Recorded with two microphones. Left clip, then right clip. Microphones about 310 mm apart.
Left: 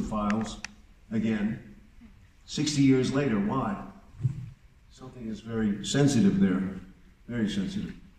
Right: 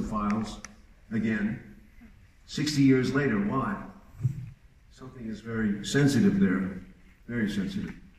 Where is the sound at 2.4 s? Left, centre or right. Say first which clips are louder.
Even; centre.